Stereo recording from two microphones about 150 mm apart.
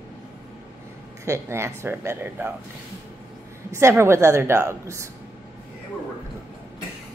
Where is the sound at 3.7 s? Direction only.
20° right (ahead or behind).